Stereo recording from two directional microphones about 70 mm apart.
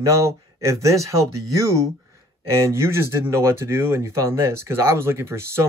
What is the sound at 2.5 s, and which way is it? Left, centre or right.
Speech, right.